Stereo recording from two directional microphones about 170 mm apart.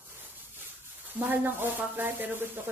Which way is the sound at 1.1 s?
10° right (ahead or behind).